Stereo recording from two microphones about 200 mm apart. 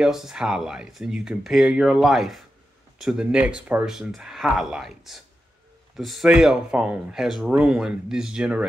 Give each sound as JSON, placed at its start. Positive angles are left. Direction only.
{"t": 0.0, "sound": "speech", "side_deg": 0}